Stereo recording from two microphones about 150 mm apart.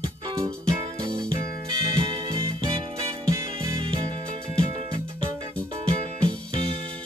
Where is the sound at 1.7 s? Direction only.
35° right (ahead or behind).